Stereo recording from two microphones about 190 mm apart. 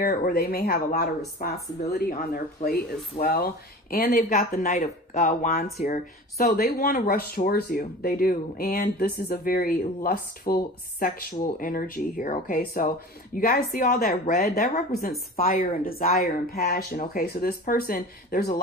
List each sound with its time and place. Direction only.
0.0 s speech: 50° left (ahead or behind)